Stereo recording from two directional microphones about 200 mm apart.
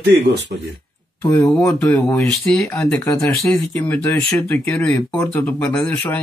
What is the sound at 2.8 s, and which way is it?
Speech, 15° left (ahead or behind).